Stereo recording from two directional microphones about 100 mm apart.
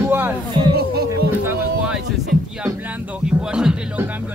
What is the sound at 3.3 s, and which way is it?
Speech, 10° right (ahead or behind).